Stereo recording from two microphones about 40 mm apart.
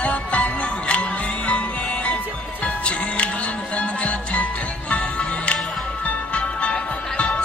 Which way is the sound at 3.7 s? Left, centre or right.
Left.